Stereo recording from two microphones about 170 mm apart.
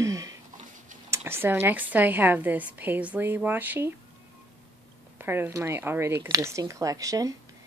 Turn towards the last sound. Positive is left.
turn(degrees=-20)  # may be behind; listen again after turning